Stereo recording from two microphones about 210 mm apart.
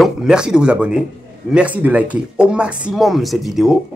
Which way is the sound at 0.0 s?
5° right (ahead or behind).